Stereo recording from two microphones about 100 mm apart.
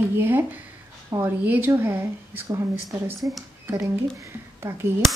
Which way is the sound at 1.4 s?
15° right (ahead or behind).